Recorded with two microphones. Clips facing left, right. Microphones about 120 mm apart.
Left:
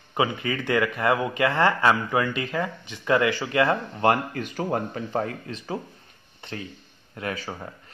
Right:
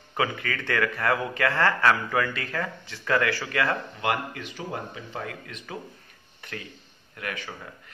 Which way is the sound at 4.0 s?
40° left (ahead or behind).